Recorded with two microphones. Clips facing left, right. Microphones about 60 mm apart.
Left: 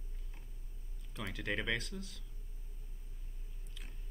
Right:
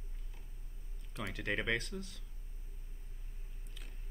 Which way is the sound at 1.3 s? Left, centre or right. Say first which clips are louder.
Right 1 dB; centre.